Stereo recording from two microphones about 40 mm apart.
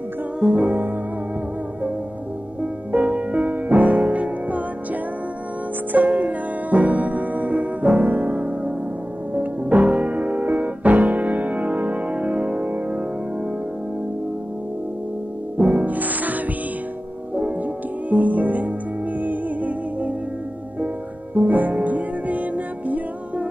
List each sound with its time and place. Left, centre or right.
0.4 s music: centre
2.6 s music: right
5.9 s music: right
15.5 s music: right
18.1 s music: right
21.5 s music: right